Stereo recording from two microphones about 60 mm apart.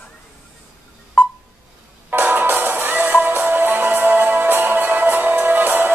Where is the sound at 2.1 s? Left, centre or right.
Right.